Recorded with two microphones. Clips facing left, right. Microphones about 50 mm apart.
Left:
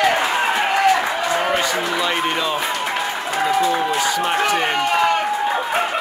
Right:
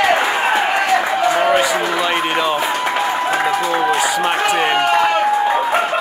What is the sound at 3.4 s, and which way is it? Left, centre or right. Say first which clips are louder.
Speech: right 2 dB; right.